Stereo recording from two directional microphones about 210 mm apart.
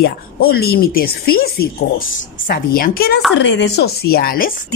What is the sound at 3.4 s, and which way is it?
A woman's voice, 55° left (ahead or behind).